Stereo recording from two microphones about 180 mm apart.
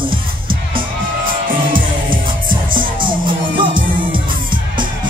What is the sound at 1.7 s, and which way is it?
Music, 50° right (ahead or behind).